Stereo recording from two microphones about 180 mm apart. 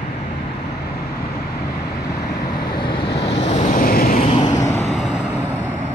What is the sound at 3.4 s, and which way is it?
Waves, 50° left (ahead or behind).